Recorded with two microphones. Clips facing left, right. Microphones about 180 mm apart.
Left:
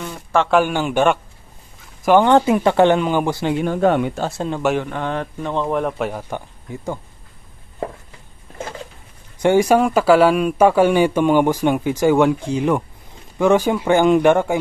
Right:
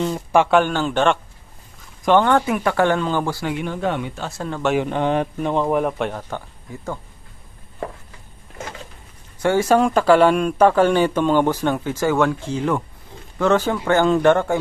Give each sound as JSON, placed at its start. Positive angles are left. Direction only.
{"t": 0.0, "sound": "a man's voice", "side_deg": -20}
{"t": 0.5, "sound": "a man's voice", "side_deg": 0}
{"t": 2.3, "sound": "speech", "side_deg": 25}
{"t": 3.5, "sound": "speech", "side_deg": 45}
{"t": 4.4, "sound": "speech", "side_deg": 20}
{"t": 4.8, "sound": "speech", "side_deg": -20}
{"t": 6.3, "sound": "speech", "side_deg": 15}
{"t": 9.4, "sound": "speech", "side_deg": 15}